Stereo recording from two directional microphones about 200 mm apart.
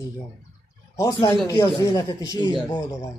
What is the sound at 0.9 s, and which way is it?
Speech, 15° left (ahead or behind).